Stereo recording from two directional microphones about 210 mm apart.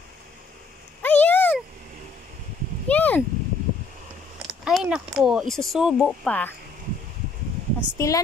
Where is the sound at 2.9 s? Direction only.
5° left (ahead or behind).